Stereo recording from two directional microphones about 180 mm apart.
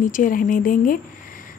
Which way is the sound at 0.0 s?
45° left (ahead or behind).